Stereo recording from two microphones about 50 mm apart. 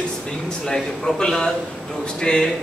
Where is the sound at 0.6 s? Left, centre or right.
Centre.